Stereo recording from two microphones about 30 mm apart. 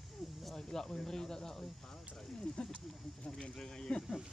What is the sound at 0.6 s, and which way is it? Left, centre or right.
Speech, centre.